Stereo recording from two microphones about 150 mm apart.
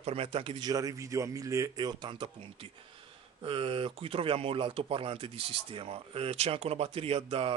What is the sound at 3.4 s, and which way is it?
Speech, 35° right (ahead or behind).